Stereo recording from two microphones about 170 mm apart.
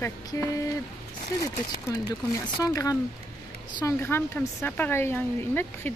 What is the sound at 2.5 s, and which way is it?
A woman's voice, 20° left (ahead or behind).